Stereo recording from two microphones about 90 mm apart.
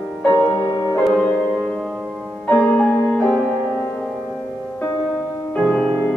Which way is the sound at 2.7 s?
10° left (ahead or behind).